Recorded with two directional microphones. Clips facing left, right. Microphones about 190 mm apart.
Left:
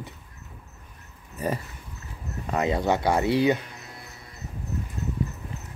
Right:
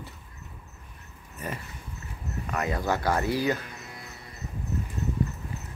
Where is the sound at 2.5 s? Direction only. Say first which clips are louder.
Left 5 dB; 25° left (ahead or behind).